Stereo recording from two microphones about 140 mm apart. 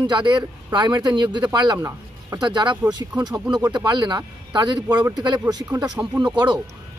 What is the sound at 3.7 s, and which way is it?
Speech, 35° right (ahead or behind).